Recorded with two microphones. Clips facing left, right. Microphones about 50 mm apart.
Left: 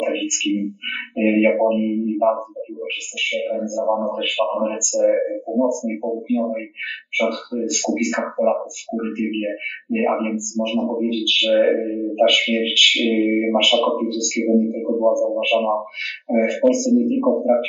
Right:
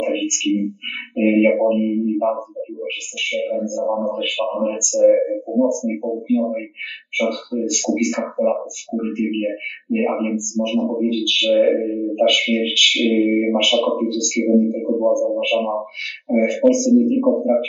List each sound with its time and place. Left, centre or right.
0.0 s a sound: centre
1.1 s a man's voice: centre
9.8 s a man's voice: centre